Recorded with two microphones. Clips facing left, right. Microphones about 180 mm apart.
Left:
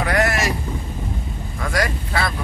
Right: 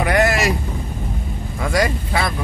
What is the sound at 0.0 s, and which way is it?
Boat, 20° right (ahead or behind).